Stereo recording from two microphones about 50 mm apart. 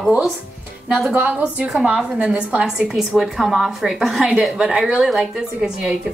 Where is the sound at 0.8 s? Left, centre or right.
Centre.